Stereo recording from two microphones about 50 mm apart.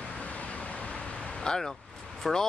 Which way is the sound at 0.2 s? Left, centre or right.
Left.